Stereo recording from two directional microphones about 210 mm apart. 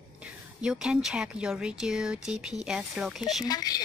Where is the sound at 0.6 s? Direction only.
5° right (ahead or behind).